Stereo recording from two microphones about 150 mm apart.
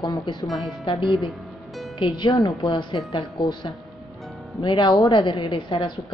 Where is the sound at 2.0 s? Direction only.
30° left (ahead or behind).